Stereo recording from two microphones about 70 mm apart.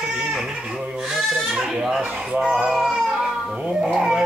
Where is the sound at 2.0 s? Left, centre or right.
Right.